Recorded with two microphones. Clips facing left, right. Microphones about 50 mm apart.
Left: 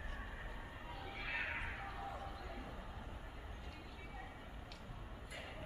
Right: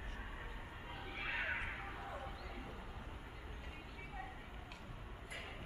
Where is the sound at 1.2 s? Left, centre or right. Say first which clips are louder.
Right 2 dB; right.